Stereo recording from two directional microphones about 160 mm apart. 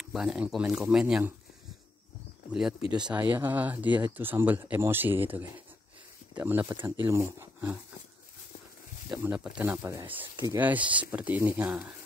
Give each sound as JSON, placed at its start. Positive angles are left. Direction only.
{"t": 0.1, "sound": "speech", "side_deg": -5}
{"t": 3.0, "sound": "speech", "side_deg": -10}
{"t": 9.1, "sound": "speech", "side_deg": -10}
{"t": 9.7, "sound": "speech", "side_deg": -20}
{"t": 10.3, "sound": "speech", "side_deg": -25}
{"t": 10.6, "sound": "speech", "side_deg": -10}